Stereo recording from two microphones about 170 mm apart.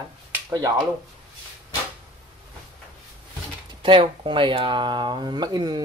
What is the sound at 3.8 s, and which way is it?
Speech, 30° right (ahead or behind).